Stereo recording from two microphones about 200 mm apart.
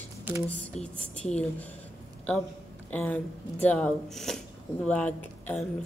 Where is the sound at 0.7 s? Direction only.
35° left (ahead or behind).